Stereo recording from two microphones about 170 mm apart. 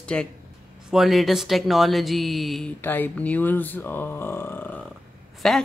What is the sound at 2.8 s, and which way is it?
Speech, 10° left (ahead or behind).